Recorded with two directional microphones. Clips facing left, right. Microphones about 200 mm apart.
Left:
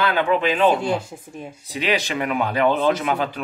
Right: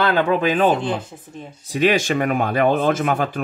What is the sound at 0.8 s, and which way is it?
Speech, 10° left (ahead or behind).